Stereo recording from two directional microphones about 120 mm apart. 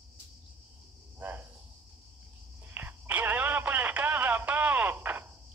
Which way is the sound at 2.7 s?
15° right (ahead or behind).